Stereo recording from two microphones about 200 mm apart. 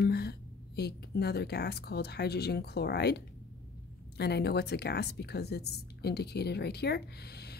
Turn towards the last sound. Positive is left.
turn(degrees=55)  # may be behind; listen again after turning